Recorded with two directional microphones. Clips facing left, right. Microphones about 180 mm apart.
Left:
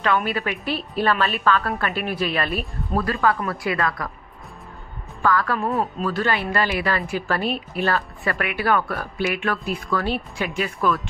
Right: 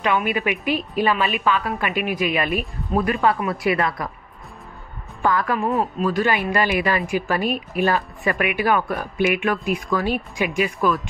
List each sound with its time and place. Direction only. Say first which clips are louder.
0.0 s a woman's voice: right 1 dB; 15° right (ahead or behind)
5.2 s a woman's voice: right 1 dB; 20° right (ahead or behind)
5.7 s speech: right 2 dB; centre (ahead or behind)
6.0 s a woman's voice: right 3 dB; 15° right (ahead or behind)